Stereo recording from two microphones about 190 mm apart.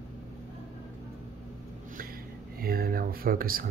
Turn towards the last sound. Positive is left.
turn(degrees=-50)  # may be behind; listen again after turning